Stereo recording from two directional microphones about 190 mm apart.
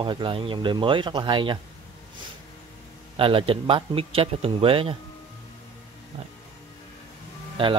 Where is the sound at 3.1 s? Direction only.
30° right (ahead or behind).